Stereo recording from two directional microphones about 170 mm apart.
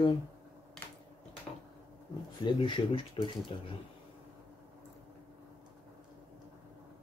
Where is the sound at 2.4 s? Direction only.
30° left (ahead or behind).